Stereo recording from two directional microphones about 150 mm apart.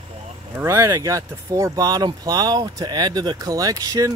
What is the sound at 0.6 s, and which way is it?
Speech, 20° right (ahead or behind).